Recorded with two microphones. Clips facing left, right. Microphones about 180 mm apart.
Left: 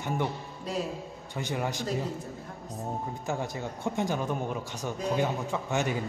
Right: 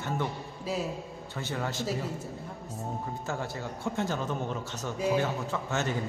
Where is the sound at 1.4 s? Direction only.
15° left (ahead or behind).